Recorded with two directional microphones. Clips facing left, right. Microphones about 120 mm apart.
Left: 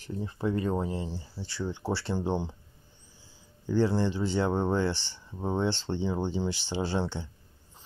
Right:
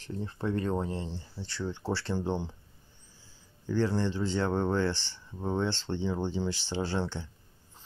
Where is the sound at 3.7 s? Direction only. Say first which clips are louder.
Left 3 dB; 15° left (ahead or behind).